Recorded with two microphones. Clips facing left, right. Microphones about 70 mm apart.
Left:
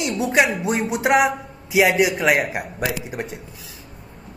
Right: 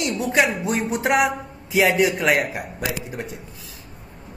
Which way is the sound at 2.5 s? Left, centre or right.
Left.